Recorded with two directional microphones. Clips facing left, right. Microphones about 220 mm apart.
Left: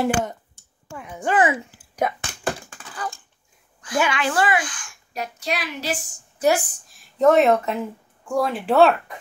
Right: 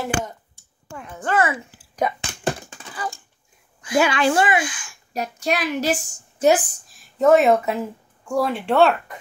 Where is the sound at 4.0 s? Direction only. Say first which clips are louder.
Right 3 dB; 30° right (ahead or behind).